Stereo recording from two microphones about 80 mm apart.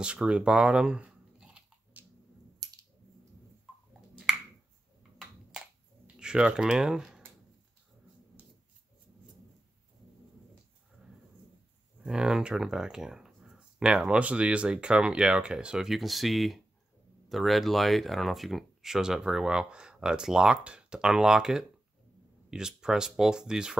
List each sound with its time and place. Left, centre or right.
0.0 s speech: centre
2.0 s a sound: right
6.1 s speech: centre
12.0 s speech: centre